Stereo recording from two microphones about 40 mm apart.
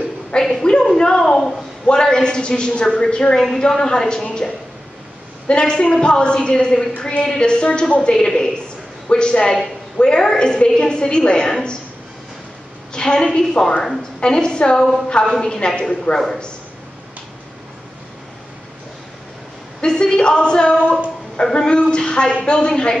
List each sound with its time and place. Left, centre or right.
0.4 s a sound: centre
1.9 s a woman's voice: centre
5.5 s a woman's voice: left
9.1 s a woman's voice: left
12.9 s a woman's voice: left
19.8 s a woman's voice: centre